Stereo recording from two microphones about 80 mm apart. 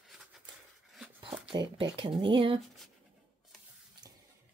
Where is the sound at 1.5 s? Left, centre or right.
Right.